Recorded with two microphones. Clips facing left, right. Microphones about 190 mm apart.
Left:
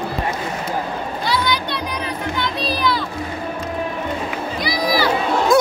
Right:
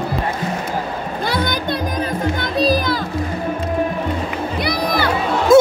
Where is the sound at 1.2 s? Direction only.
50° right (ahead or behind).